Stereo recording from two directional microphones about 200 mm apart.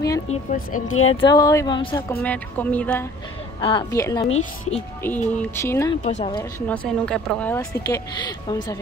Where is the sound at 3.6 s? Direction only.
20° left (ahead or behind).